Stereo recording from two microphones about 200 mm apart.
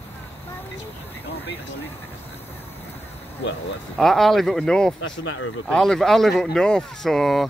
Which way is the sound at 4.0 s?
Centre (ahead or behind).